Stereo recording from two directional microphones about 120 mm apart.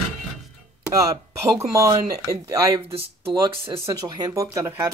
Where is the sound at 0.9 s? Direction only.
25° right (ahead or behind).